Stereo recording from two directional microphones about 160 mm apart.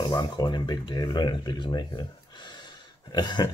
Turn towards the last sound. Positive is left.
turn(degrees=25)  # may be behind; listen again after turning